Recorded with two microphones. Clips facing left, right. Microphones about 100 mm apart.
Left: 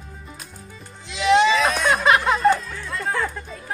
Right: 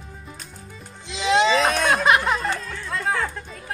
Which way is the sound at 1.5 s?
50° right (ahead or behind).